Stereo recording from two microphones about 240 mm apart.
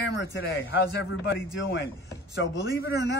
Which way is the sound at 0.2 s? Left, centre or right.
Left.